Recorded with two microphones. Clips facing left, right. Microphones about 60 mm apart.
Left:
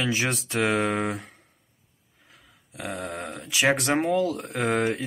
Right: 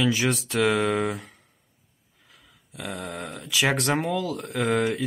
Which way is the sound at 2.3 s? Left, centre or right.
Left.